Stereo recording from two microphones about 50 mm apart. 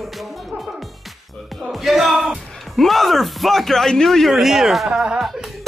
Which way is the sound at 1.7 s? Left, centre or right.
Centre.